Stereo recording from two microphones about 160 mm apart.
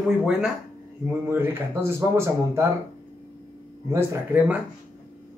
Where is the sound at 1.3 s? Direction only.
15° right (ahead or behind).